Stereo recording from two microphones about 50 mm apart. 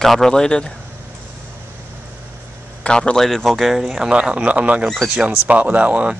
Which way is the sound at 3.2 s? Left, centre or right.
Centre.